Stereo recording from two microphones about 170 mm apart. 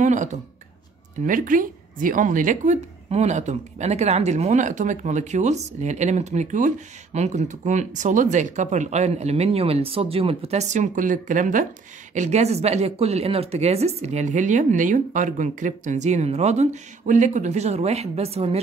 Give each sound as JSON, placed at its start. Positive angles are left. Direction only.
{"t": 0.0, "sound": "speech", "side_deg": -45}